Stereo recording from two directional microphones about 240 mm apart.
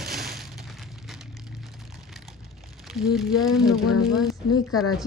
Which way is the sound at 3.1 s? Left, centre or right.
Centre.